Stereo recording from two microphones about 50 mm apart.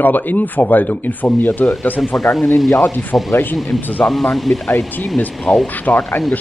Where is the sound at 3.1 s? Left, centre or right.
Left.